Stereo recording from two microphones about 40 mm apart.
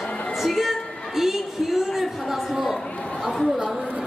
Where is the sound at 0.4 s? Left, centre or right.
Centre.